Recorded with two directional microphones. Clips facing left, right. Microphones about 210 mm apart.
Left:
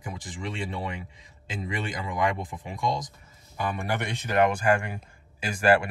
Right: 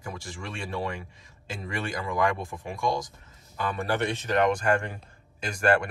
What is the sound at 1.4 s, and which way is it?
Speech, 20° left (ahead or behind).